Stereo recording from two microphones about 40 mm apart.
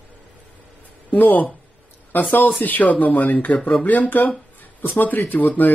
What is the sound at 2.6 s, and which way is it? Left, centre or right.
Speech, left.